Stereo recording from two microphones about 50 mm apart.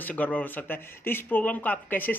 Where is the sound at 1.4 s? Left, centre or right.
Left.